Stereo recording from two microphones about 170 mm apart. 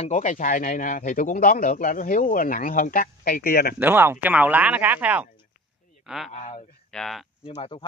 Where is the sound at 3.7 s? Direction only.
10° right (ahead or behind).